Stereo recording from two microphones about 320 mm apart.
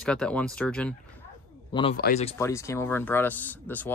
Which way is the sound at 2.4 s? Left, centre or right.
Centre.